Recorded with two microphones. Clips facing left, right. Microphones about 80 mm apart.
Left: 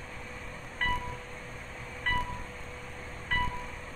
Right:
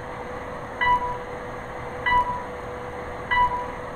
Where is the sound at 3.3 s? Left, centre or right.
Right.